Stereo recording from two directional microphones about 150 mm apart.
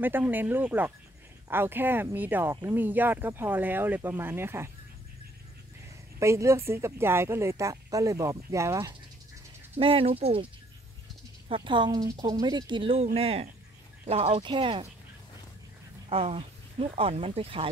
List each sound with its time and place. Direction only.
0.0 s speech: 10° right (ahead or behind)
6.1 s speech: 20° right (ahead or behind)
9.8 s speech: 35° right (ahead or behind)
16.1 s speech: 40° right (ahead or behind)